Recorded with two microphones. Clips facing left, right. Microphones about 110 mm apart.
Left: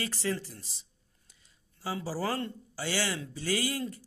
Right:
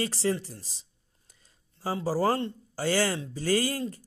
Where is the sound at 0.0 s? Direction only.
30° right (ahead or behind).